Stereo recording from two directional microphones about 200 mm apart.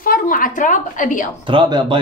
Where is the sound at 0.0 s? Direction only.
45° left (ahead or behind).